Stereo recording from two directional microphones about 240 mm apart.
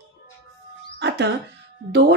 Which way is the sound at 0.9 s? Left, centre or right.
Right.